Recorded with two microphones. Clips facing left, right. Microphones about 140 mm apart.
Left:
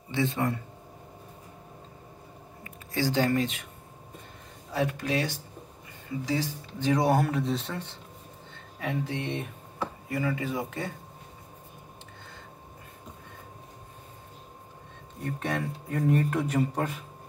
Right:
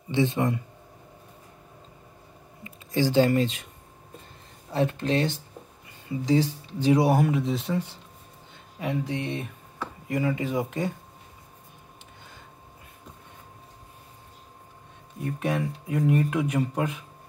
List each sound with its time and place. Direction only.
0.1 s speech: 20° right (ahead or behind)
2.6 s a sound: 20° right (ahead or behind)
4.7 s speech: 25° right (ahead or behind); by 7.9 s 5° right (ahead or behind)
8.7 s speech: 15° right (ahead or behind)
15.3 s speech: 5° right (ahead or behind)